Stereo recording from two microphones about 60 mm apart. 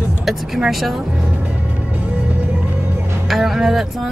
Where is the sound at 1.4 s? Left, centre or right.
Right.